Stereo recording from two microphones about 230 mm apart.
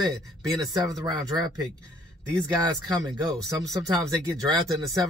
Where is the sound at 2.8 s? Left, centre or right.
Centre.